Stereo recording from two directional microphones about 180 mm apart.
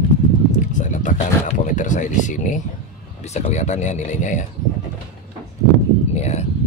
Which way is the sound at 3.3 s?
40° left (ahead or behind).